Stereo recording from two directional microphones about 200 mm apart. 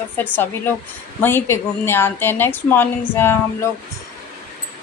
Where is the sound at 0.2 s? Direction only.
10° left (ahead or behind).